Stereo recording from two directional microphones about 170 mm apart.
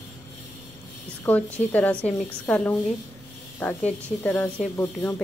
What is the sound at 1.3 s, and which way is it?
Speech, 10° left (ahead or behind).